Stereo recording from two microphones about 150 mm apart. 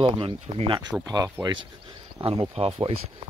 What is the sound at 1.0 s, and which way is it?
Speech, 25° right (ahead or behind).